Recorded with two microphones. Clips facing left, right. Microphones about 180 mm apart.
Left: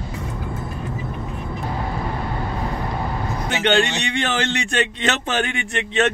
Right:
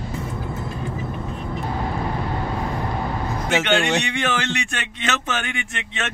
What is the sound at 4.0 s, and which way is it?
A man's voice, 35° left (ahead or behind).